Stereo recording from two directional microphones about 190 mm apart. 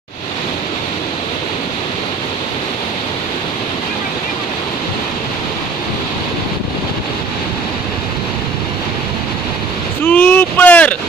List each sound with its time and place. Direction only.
10.0 s vehicle: 10° left (ahead or behind)